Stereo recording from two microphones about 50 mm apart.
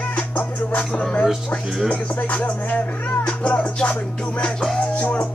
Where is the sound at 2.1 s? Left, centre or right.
Left.